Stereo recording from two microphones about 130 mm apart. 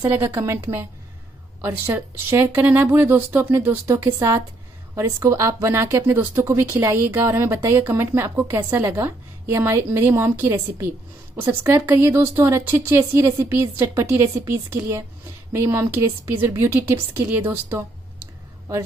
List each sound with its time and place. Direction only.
0.0 s speech: 15° right (ahead or behind)